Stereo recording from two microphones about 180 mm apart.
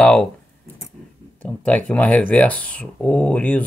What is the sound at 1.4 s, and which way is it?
Speech, 5° left (ahead or behind).